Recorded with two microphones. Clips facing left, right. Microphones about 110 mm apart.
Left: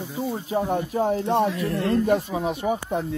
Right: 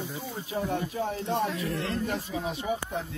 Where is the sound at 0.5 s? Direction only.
50° left (ahead or behind).